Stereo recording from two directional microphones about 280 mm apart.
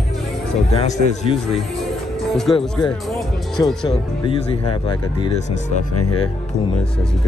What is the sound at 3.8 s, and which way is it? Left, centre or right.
Speech, centre.